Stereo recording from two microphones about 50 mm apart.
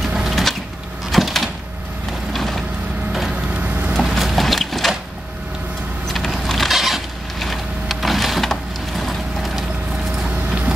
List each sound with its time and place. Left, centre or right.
0.1 s a sound: centre
1.1 s door: centre
2.3 s vehicle: centre
3.3 s wood: right
3.9 s wood: centre
6.1 s vehicle: centre